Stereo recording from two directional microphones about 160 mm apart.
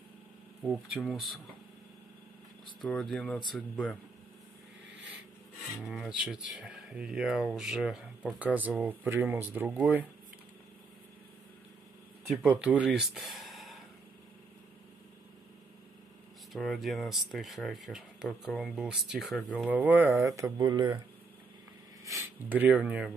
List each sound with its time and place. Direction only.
0.7 s speech: centre (ahead or behind)
2.8 s speech: 5° left (ahead or behind)
5.9 s speech: 5° right (ahead or behind)
12.3 s speech: 5° right (ahead or behind)
16.5 s speech: centre (ahead or behind); by 21.0 s 30° right (ahead or behind)
22.0 s speech: 15° right (ahead or behind)